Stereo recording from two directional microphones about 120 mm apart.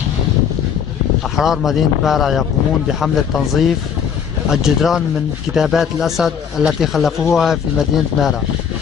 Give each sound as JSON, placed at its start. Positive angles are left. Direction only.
{"t": 1.3, "sound": "speech", "side_deg": -5}